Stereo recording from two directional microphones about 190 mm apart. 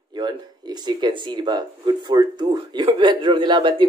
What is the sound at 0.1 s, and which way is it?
Speech, 20° right (ahead or behind).